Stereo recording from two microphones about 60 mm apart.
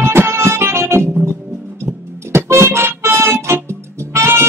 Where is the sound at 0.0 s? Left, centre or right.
Right.